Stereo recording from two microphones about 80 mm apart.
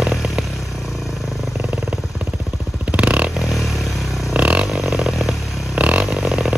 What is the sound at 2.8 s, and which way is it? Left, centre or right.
Vehicle, centre.